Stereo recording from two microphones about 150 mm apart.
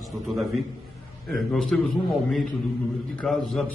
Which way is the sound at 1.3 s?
Centre (ahead or behind).